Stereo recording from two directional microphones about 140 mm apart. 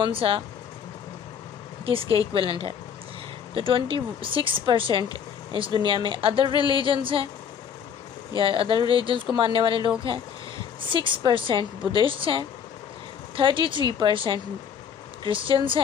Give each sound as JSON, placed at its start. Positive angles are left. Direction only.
{"t": 0.0, "sound": "a woman's voice", "side_deg": -40}
{"t": 1.9, "sound": "a woman's voice", "side_deg": -40}
{"t": 3.5, "sound": "a woman's voice", "side_deg": -40}
{"t": 8.4, "sound": "a woman's voice", "side_deg": -40}